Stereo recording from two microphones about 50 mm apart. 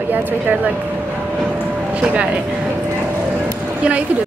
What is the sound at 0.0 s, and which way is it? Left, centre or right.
Speech, right.